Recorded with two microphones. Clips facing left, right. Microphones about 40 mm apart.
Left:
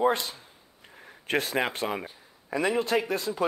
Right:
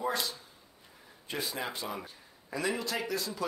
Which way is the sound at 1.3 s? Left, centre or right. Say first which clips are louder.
Left 9 dB; left.